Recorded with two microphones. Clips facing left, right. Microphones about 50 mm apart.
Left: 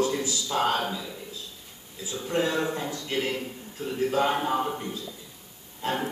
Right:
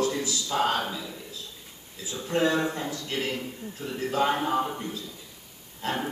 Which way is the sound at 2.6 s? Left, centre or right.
Left.